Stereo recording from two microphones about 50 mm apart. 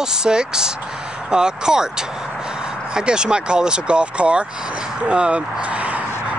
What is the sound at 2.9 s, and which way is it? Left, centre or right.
Speech, centre.